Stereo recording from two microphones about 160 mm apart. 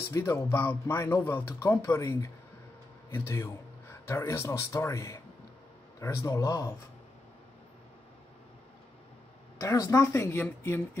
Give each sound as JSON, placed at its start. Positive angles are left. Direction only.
{"t": 0.1, "sound": "speech", "side_deg": 15}
{"t": 6.2, "sound": "speech", "side_deg": 20}
{"t": 9.6, "sound": "speech", "side_deg": 20}